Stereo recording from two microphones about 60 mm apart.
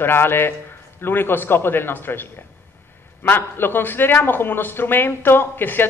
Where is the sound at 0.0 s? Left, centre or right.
Left.